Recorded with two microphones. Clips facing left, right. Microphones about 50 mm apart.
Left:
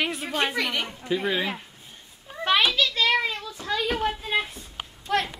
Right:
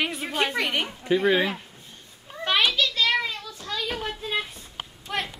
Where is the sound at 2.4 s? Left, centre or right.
Centre.